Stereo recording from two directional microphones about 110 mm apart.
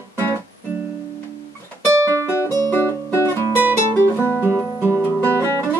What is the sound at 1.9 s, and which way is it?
Music, 25° right (ahead or behind).